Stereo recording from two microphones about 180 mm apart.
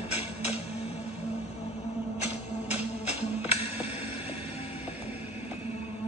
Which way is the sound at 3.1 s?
35° left (ahead or behind).